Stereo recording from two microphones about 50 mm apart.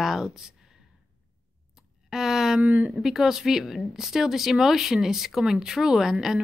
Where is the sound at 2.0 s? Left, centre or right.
Centre.